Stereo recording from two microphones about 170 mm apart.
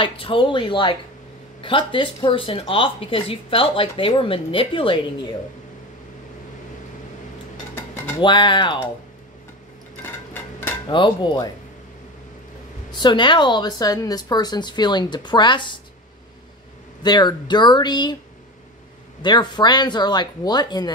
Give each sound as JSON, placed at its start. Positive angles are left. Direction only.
{"t": 0.0, "sound": "speech", "side_deg": 30}
{"t": 8.2, "sound": "speech", "side_deg": 25}
{"t": 10.9, "sound": "speech", "side_deg": 25}
{"t": 12.9, "sound": "speech", "side_deg": 25}
{"t": 17.0, "sound": "speech", "side_deg": 25}
{"t": 19.2, "sound": "speech", "side_deg": 25}